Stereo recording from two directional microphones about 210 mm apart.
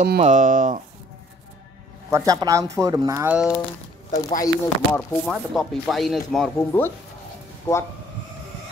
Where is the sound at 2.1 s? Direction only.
15° right (ahead or behind).